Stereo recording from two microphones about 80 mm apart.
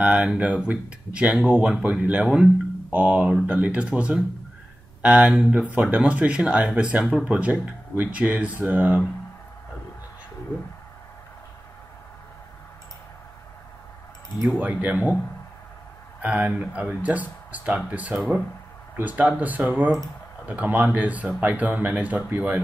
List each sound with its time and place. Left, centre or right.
0.0 s speech: centre
2.2 s speech: centre
2.9 s speech: centre
14.6 s speech: right
16.2 s speech: centre